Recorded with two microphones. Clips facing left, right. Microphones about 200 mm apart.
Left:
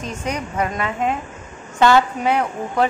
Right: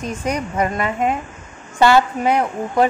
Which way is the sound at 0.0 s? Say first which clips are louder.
Right 3 dB; 10° right (ahead or behind).